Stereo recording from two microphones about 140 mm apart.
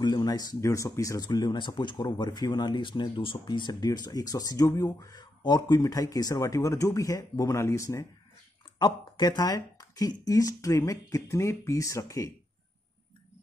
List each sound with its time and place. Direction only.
0.0 s speech: 30° left (ahead or behind)